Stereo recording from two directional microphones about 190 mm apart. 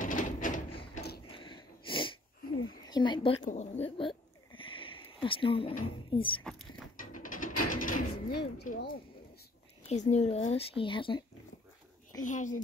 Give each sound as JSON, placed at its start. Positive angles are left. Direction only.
{"t": 0.0, "sound": "a sound", "side_deg": 45}
{"t": 1.0, "sound": "a sound", "side_deg": 60}
{"t": 1.3, "sound": "sniff", "side_deg": 25}
{"t": 2.9, "sound": "speech", "side_deg": 25}
{"t": 3.4, "sound": "speech", "side_deg": 35}
{"t": 7.0, "sound": "mechanisms", "side_deg": 45}
{"t": 9.8, "sound": "speech", "side_deg": 35}
{"t": 12.3, "sound": "speech", "side_deg": 40}